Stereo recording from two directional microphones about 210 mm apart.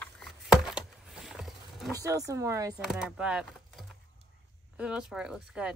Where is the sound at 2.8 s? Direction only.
5° right (ahead or behind).